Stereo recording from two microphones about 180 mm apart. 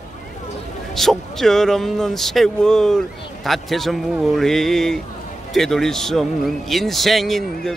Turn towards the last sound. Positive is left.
turn(degrees=0)  # may be behind; listen again after turning